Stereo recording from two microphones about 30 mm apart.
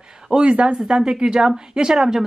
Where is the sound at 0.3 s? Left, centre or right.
Right.